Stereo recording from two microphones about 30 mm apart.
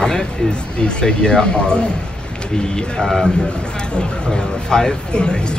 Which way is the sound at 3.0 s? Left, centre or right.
Centre.